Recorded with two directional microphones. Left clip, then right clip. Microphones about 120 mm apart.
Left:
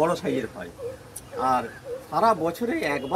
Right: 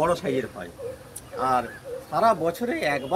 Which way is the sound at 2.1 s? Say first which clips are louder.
Even; 70° right (ahead or behind).